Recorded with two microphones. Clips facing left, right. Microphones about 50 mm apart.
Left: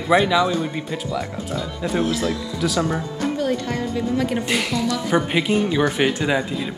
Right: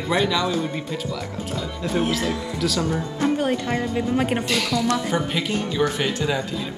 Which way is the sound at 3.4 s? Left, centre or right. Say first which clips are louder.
Even; right.